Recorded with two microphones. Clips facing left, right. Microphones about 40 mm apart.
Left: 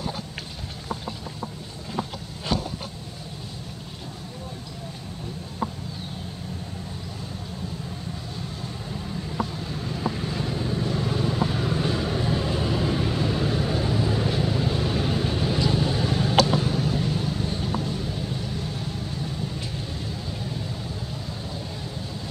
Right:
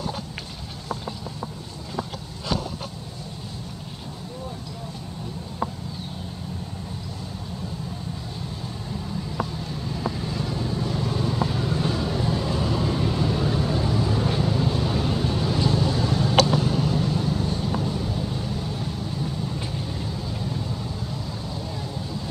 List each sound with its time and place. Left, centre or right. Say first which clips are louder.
9.8 s vehicle: left 1 dB; centre
16.4 s a sound: right 1 dB; centre
17.6 s vehicle: right 2 dB; centre